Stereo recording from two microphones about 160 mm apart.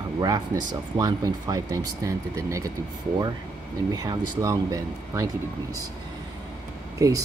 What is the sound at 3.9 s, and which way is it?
Speech, 25° right (ahead or behind).